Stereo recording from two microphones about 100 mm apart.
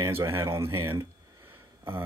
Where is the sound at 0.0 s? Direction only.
25° right (ahead or behind).